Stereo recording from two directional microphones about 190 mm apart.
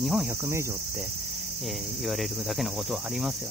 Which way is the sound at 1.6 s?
Centre (ahead or behind).